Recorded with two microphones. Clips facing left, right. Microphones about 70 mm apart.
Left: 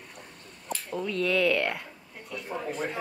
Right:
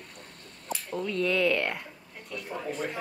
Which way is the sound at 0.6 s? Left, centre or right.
Centre.